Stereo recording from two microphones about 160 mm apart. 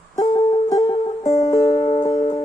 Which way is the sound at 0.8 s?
35° left (ahead or behind).